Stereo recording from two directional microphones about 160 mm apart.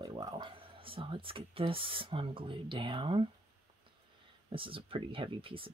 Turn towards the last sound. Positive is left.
turn(degrees=-35)  # may be behind; listen again after turning